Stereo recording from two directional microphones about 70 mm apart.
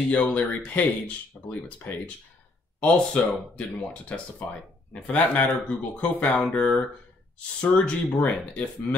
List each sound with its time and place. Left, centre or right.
0.1 s speech: centre